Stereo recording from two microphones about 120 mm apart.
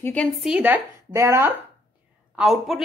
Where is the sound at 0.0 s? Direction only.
10° left (ahead or behind).